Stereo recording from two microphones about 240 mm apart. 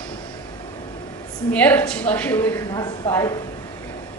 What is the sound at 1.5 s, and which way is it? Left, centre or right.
Speech, centre.